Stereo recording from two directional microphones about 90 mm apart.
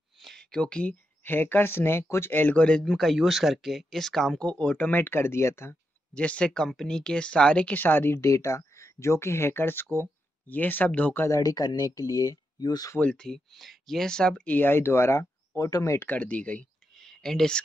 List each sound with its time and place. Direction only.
0.2 s speech: 5° left (ahead or behind); by 5.8 s 30° left (ahead or behind)
6.1 s speech: 15° left (ahead or behind)
11.2 s speech: 40° left (ahead or behind)
13.0 s speech: 10° left (ahead or behind); by 16.1 s 35° left (ahead or behind)
16.1 s speech: 15° left (ahead or behind)
16.9 s a sound: 5° left (ahead or behind)